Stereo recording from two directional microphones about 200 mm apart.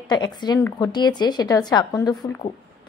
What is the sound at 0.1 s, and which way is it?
A woman's voice, 20° left (ahead or behind).